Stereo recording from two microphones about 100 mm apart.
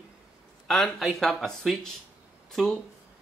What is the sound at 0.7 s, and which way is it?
Speech, centre (ahead or behind).